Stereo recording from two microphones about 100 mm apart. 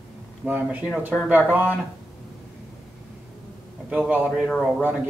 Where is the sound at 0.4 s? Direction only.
10° right (ahead or behind).